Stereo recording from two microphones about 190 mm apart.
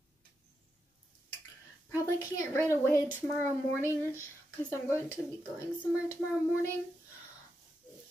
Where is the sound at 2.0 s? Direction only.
15° left (ahead or behind).